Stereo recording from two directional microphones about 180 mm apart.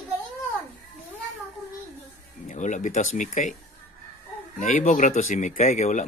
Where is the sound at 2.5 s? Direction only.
45° left (ahead or behind).